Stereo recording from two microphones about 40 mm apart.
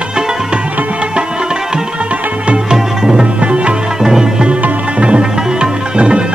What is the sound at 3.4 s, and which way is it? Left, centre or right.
Music, right.